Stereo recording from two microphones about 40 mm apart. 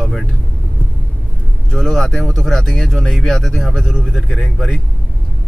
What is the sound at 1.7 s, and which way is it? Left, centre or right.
Speech, centre.